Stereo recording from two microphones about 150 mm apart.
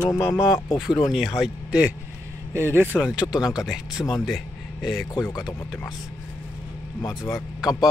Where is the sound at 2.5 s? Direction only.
15° right (ahead or behind).